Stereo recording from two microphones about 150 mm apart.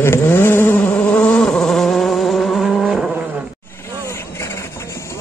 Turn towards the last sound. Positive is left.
turn(degrees=20)  # may be behind; listen again after turning